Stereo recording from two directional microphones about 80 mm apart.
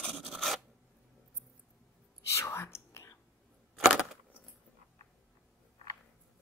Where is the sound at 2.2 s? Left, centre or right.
Left.